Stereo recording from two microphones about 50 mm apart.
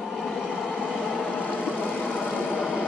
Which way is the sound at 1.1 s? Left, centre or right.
Left.